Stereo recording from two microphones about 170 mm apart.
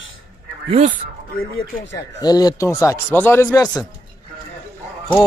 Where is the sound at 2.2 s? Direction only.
25° left (ahead or behind).